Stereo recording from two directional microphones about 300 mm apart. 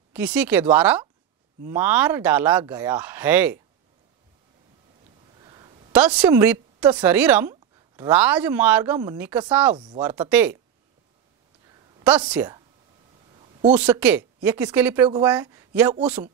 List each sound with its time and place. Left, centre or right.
0.1 s speech: centre
5.4 s a woman's voice: centre
9.8 s speech: centre
10.0 s speech: centre
12.3 s speech: centre
13.7 s speech: centre